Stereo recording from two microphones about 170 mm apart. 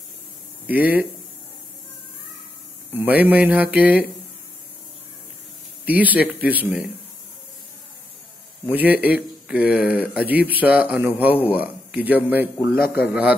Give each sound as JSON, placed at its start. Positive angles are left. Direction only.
{"t": 0.7, "sound": "speech", "side_deg": -10}
{"t": 2.9, "sound": "speech", "side_deg": -10}
{"t": 5.9, "sound": "speech", "side_deg": -10}
{"t": 8.6, "sound": "speech", "side_deg": -10}
{"t": 12.7, "sound": "a man's voice", "side_deg": 65}